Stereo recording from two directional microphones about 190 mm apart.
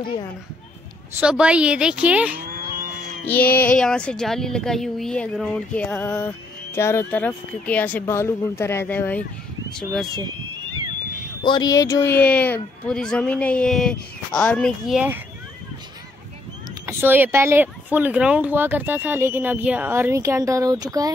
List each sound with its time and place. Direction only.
1.2 s speech: 5° right (ahead or behind)
3.6 s speech: 5° left (ahead or behind)
11.4 s speech: 20° left (ahead or behind); by 15.2 s 10° right (ahead or behind)
16.8 s speech: 10° right (ahead or behind)